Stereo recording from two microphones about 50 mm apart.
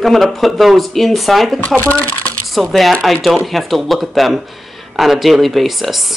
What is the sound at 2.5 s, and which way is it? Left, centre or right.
Speech, centre.